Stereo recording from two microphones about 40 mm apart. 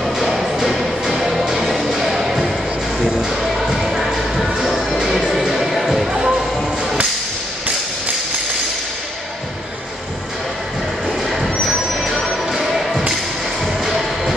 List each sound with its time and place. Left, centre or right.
0.0 s music: centre
4.6 s music: centre
6.1 s music: centre
11.2 s vehicle: centre
12.1 s basketball bounce: centre
13.8 s music: centre